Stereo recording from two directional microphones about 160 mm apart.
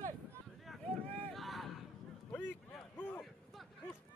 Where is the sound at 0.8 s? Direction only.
5° left (ahead or behind).